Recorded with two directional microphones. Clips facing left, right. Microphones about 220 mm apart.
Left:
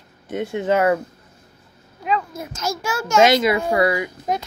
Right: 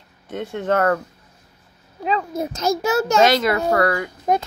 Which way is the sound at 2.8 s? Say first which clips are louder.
Even; 35° right (ahead or behind).